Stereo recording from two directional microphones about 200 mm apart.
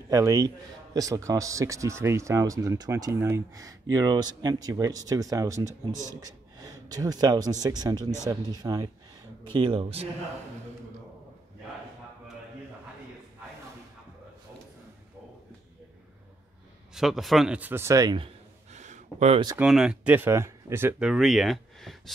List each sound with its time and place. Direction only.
0.1 s speech: 20° right (ahead or behind)
16.9 s speech: centre (ahead or behind); by 18.3 s 20° right (ahead or behind)
18.7 s a sound: 35° right (ahead or behind)
19.6 s speech: 5° right (ahead or behind)